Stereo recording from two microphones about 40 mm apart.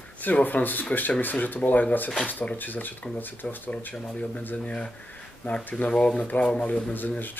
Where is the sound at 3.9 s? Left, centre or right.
Left.